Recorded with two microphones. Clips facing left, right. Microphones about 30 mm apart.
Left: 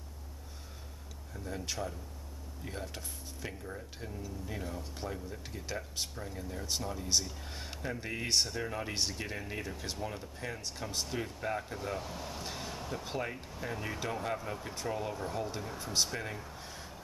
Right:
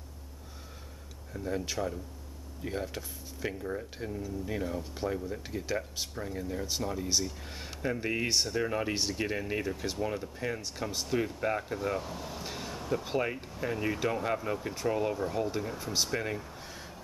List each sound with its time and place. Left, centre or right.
1.3 s speech: centre
8.3 s speech: centre
8.6 s speech: centre
10.6 s speech: centre